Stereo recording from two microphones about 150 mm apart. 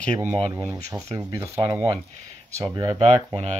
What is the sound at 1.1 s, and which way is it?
Speech, 20° right (ahead or behind).